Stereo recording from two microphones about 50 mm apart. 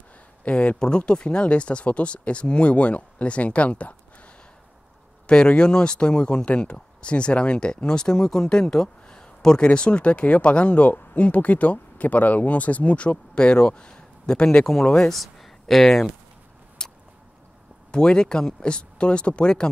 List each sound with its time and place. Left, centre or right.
0.5 s speech: left
5.2 s speech: centre
16.8 s a sound: centre
17.9 s speech: centre